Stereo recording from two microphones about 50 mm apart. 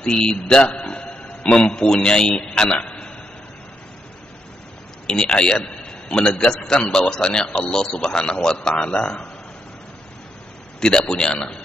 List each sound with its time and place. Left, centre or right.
0.0 s a man's voice: centre
0.7 s music: left
5.0 s a man's voice: centre
6.8 s speech: left
7.1 s a man's voice: centre
10.8 s a man's voice: centre